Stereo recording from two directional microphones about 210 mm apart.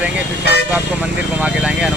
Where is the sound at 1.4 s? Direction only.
5° right (ahead or behind).